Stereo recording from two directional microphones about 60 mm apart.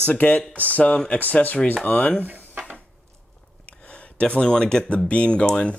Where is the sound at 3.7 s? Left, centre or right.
Left.